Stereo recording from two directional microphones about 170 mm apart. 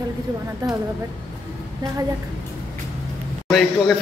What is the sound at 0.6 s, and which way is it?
Speech, 25° right (ahead or behind).